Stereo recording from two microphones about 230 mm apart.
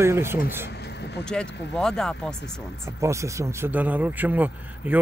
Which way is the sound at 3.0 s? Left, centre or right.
Centre.